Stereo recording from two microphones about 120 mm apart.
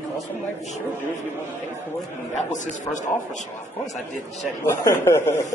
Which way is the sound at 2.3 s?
90° left.